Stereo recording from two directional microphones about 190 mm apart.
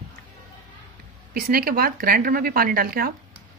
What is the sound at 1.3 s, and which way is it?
Speech, 50° right (ahead or behind).